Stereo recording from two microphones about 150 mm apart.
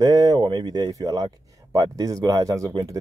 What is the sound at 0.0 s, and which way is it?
Speech, 25° right (ahead or behind).